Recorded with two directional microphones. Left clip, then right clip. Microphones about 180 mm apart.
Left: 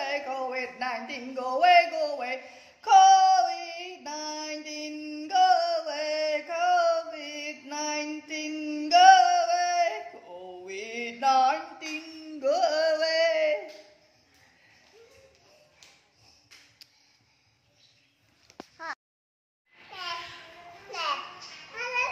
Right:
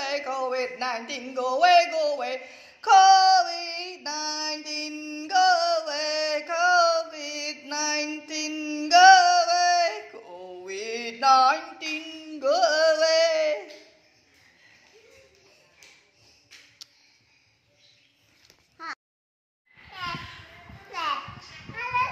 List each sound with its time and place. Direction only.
0.0 s speech: 5° right (ahead or behind)
4.0 s female singing: 5° right (ahead or behind)
4.7 s a sound: centre (ahead or behind)
8.5 s singing: centre (ahead or behind)
10.7 s mantra: 45° right (ahead or behind)
11.1 s mantra: centre (ahead or behind)